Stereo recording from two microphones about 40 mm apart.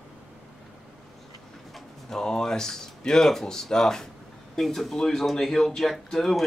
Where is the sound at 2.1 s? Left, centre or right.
Centre.